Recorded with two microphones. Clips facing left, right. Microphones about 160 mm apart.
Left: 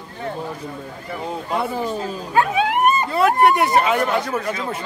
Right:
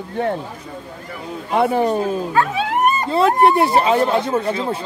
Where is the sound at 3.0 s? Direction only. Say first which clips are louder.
Right 4 dB; 25° right (ahead or behind).